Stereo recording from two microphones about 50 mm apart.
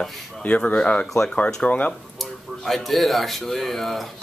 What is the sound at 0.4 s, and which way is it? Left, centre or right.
Speech, left.